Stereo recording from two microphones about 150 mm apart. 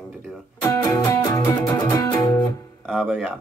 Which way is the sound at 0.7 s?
20° left (ahead or behind).